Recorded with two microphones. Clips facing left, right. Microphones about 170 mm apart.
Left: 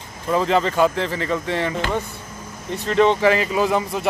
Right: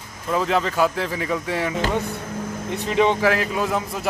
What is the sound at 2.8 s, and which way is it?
Speech, 15° right (ahead or behind).